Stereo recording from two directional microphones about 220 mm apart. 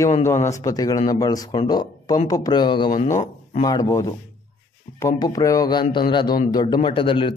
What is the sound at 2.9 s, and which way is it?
Speech, 35° left (ahead or behind).